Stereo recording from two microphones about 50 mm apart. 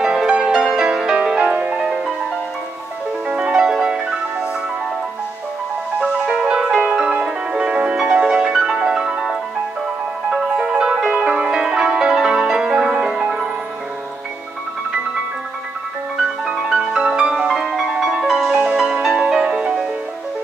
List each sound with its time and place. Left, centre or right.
0.0 s music: centre
3.3 s music: right
5.9 s music: centre
10.3 s music: right
16.9 s music: centre